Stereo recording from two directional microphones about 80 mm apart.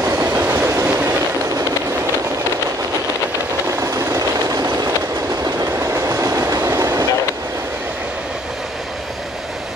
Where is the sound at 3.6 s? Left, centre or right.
Right.